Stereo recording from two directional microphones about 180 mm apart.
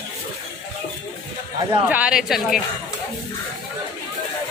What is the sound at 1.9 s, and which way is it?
Speech, 5° right (ahead or behind).